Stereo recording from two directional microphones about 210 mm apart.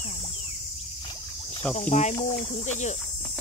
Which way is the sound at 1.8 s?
35° left (ahead or behind).